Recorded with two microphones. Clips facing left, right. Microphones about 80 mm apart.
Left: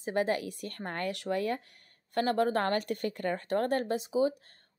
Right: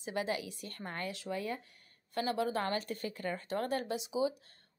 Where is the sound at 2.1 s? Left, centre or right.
Left.